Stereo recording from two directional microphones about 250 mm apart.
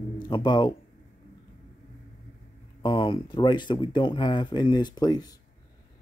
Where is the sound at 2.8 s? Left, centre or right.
Centre.